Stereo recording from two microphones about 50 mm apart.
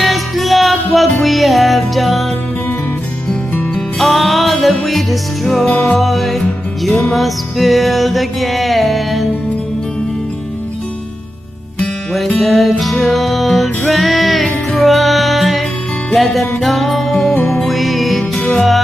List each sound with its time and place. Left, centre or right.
0.0 s music: centre
3.7 s music: centre
12.4 s music: centre